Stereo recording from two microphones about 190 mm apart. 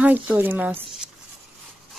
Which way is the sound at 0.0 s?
10° right (ahead or behind).